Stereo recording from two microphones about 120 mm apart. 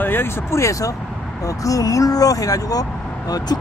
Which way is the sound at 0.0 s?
20° left (ahead or behind).